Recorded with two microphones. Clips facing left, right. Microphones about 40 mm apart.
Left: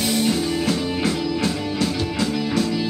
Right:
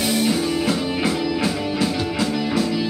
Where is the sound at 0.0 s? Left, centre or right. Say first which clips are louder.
Right 1 dB; centre.